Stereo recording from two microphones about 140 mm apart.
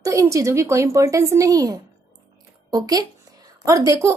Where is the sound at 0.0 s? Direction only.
20° right (ahead or behind).